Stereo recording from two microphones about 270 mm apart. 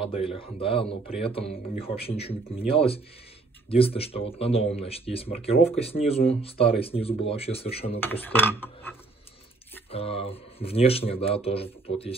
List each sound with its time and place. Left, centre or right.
0.1 s speech: left
8.0 s mechanisms: centre
9.8 s speech: left